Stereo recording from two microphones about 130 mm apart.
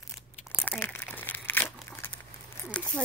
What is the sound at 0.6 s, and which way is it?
Crumpling, 10° left (ahead or behind).